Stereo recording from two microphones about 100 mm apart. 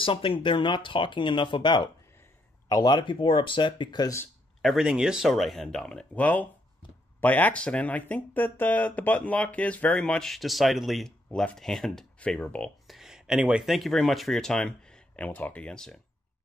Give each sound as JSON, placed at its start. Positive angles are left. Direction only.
{"t": 0.0, "sound": "speech", "side_deg": 65}
{"t": 4.6, "sound": "speech", "side_deg": -5}
{"t": 12.8, "sound": "speech", "side_deg": -5}